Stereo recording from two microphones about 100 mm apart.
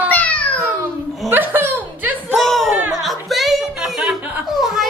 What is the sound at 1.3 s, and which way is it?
Chuckle, 20° right (ahead or behind).